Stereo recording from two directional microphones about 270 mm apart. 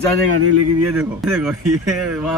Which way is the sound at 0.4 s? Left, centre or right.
Right.